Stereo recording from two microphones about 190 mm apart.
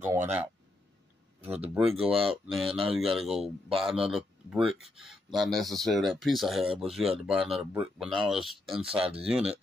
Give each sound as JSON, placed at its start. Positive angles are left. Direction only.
{"t": 0.0, "sound": "speech", "side_deg": -10}
{"t": 1.4, "sound": "speech", "side_deg": -30}
{"t": 2.2, "sound": "speech", "side_deg": 0}